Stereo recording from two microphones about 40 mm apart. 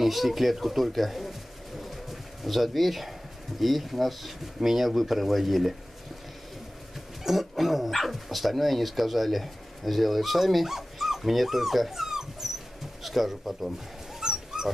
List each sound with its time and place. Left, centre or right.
0.0 s speech: centre
2.4 s speech: centre
7.2 s speech: centre
14.2 s dog: centre